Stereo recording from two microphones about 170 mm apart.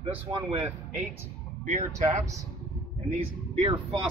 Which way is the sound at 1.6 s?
45° right (ahead or behind).